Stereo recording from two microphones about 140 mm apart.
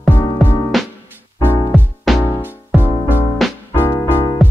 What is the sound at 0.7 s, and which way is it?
Music, centre (ahead or behind).